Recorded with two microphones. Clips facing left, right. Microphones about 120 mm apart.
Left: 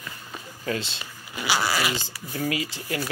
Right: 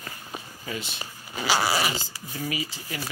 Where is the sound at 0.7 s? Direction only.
85° left.